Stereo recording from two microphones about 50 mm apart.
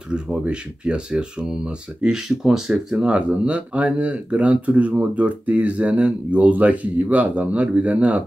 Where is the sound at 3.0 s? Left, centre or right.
Right.